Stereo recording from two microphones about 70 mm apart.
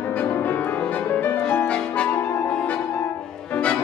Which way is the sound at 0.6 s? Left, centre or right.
Centre.